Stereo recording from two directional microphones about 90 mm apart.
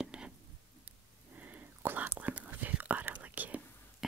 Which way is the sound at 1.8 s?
25° right (ahead or behind).